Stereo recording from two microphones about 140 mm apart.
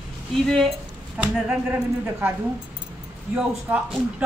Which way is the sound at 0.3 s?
Centre (ahead or behind).